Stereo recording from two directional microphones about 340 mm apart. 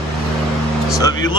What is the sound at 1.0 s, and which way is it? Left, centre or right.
Speech, centre.